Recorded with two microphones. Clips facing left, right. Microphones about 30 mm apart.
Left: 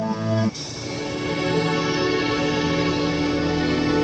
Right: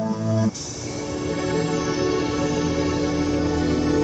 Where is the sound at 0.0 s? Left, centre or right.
Left.